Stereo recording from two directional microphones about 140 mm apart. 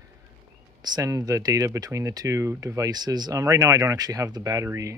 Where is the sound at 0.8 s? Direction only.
25° right (ahead or behind).